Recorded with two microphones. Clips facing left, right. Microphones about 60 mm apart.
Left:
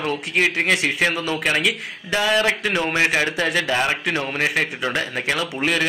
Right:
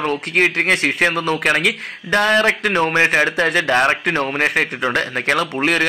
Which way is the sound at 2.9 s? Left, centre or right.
Right.